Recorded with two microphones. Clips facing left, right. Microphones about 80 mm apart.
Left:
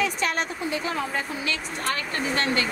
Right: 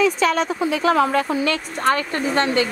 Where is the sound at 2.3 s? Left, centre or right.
Right.